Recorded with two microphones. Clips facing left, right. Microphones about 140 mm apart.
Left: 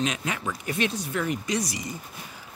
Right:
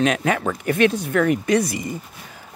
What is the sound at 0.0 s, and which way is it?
Speech, 60° right (ahead or behind).